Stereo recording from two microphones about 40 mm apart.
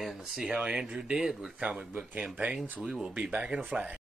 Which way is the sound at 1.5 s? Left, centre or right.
Right.